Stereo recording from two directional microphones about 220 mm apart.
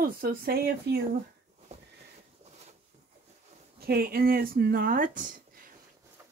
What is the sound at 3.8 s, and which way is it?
Speech, 45° right (ahead or behind).